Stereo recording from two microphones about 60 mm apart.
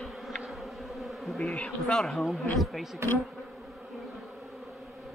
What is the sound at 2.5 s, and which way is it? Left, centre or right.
Speech, centre.